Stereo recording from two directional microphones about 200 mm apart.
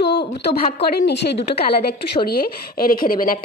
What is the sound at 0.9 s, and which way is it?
A woman's voice, 55° left (ahead or behind).